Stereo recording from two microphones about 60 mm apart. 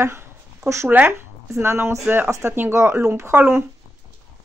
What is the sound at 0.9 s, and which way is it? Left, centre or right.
Speech, right.